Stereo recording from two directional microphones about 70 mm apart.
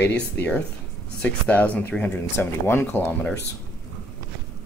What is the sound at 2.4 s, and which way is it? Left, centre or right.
Speech, left.